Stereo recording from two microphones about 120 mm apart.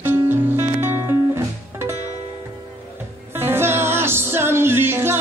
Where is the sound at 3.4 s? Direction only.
20° right (ahead or behind).